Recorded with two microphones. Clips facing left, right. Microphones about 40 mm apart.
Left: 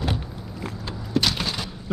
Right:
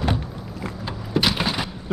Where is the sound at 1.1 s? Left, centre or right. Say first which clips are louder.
Right 2 dB; centre.